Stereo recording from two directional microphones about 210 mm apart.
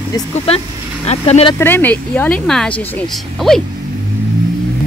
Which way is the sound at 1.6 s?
10° left (ahead or behind).